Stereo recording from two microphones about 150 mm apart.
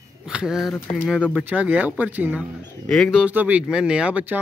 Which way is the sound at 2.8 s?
5° left (ahead or behind).